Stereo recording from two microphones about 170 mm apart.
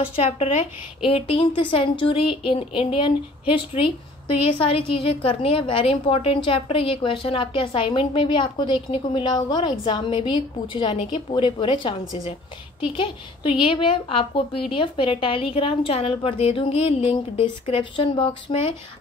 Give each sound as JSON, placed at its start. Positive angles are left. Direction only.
{"t": 0.0, "sound": "a woman's voice", "side_deg": 35}